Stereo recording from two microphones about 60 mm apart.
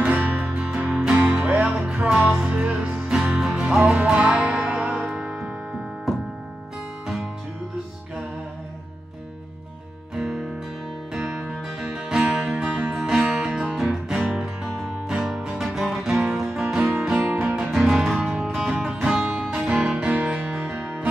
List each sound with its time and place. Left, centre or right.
0.0 s music: right
0.7 s music: right
1.5 s music: centre
10.1 s music: centre
17.1 s music: right
17.7 s music: centre
19.0 s music: right